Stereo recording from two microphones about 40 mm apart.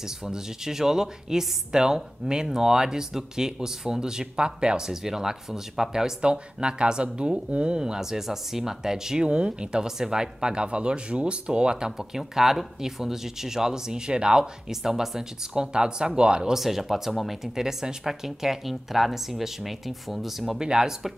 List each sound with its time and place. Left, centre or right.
0.0 s speech: centre
6.2 s speech: right
9.8 s speech: centre
14.7 s speech: centre
16.5 s speech: centre
20.6 s speech: centre